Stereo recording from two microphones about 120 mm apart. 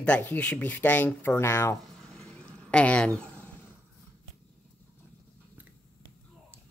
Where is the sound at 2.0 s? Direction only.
10° left (ahead or behind).